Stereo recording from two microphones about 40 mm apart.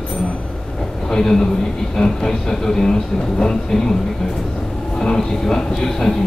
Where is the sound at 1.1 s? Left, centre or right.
Centre.